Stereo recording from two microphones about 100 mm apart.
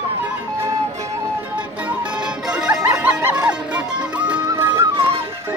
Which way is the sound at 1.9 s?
10° right (ahead or behind).